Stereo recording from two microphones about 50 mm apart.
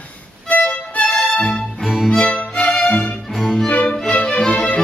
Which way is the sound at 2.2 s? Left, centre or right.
Left.